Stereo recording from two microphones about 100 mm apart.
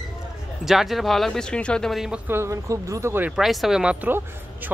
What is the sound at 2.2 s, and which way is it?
Speech, 25° right (ahead or behind).